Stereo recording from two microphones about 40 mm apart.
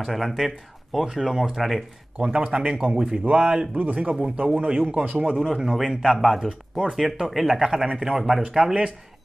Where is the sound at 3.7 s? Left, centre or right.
Right.